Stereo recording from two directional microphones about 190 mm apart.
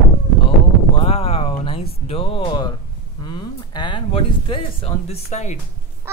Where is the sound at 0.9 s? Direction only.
30° left (ahead or behind).